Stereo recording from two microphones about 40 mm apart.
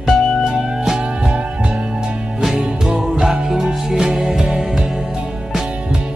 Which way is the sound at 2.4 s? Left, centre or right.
Centre.